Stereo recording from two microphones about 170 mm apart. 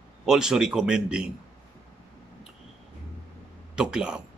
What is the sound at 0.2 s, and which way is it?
Speech, 5° right (ahead or behind).